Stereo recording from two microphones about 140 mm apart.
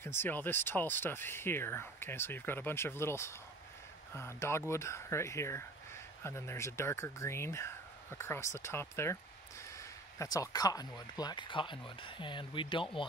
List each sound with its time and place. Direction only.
0.0 s speech: 15° left (ahead or behind); by 13.0 s 35° left (ahead or behind)